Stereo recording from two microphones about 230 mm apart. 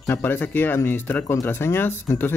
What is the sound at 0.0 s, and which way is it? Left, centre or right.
Speech, centre.